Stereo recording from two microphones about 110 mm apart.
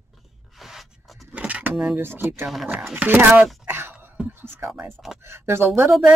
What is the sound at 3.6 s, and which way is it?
Dog, 20° right (ahead or behind).